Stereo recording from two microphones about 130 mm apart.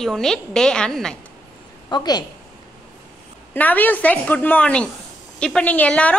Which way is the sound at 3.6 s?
15° left (ahead or behind).